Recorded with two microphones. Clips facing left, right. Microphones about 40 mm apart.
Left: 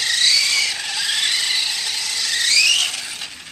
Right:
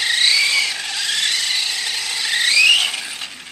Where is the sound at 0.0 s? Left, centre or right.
Centre.